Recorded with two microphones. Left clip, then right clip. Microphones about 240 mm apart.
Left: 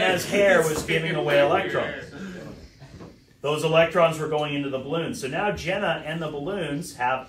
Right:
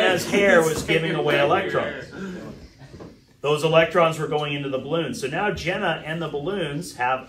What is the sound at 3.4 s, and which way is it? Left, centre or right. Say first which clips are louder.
Speech: right 2 dB; centre.